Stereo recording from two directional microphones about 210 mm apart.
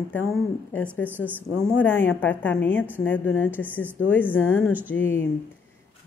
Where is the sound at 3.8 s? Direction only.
10° right (ahead or behind).